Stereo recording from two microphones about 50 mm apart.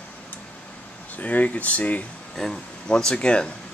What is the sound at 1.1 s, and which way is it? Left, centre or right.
Speech, left.